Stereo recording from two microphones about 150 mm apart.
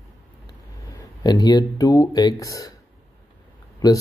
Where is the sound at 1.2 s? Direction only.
25° left (ahead or behind).